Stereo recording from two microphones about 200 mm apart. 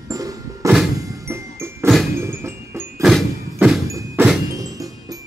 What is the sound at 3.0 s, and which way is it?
Music, centre (ahead or behind).